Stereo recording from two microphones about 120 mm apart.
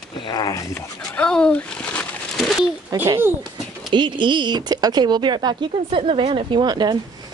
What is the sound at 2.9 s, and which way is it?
Speech, 30° right (ahead or behind).